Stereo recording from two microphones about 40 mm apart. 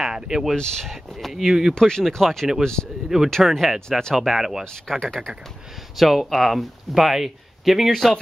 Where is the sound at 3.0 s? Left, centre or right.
Centre.